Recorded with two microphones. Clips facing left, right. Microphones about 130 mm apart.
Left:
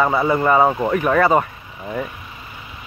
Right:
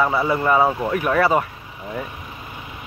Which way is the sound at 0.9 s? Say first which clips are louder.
Left 2 dB; 5° right (ahead or behind).